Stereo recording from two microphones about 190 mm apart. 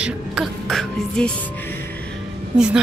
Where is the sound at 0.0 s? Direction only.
Centre (ahead or behind).